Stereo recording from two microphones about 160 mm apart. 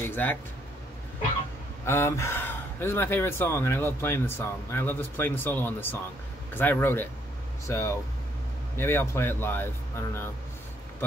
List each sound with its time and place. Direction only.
0.0 s speech: 10° left (ahead or behind)
1.9 s speech: 15° left (ahead or behind)